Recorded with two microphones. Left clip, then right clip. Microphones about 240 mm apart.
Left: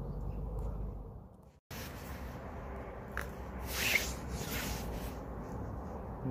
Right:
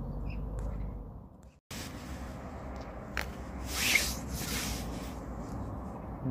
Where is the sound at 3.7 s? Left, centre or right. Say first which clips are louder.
Right 4 dB; centre.